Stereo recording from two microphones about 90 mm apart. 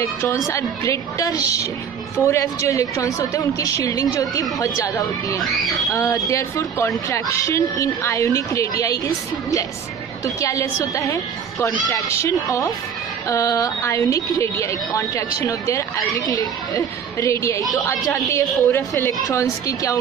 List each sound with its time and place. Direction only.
0.0 s a woman's voice: 35° left (ahead or behind)